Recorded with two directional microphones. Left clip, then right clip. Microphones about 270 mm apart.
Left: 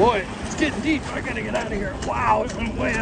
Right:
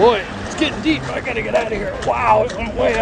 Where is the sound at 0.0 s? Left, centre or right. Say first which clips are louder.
Right 5 dB; centre.